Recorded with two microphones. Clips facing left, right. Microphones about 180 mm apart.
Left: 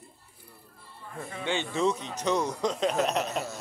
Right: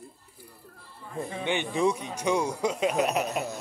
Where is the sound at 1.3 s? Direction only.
15° right (ahead or behind).